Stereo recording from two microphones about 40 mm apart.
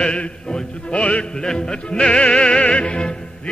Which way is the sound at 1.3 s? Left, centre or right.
Centre.